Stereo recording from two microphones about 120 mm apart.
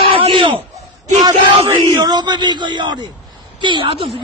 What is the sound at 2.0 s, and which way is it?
A man's voice, 35° right (ahead or behind).